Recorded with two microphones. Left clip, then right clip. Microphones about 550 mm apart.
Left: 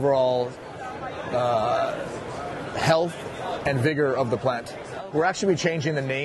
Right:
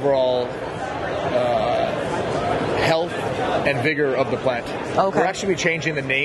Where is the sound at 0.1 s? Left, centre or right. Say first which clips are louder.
Right 4 dB; left.